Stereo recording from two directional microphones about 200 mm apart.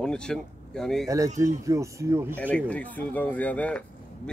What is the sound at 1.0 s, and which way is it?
Speech, 15° right (ahead or behind).